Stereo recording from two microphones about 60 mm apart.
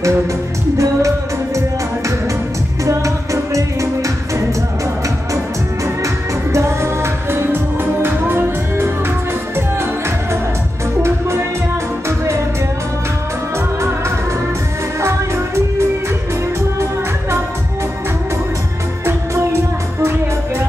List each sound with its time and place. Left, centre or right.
0.7 s music: right
2.8 s music: right
6.0 s music: right
15.0 s music: right
19.0 s music: right